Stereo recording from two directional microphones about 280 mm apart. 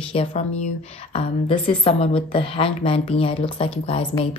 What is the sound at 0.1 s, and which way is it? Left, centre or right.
Speech, left.